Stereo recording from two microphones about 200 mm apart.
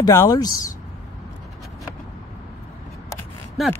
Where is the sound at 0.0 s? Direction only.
15° left (ahead or behind).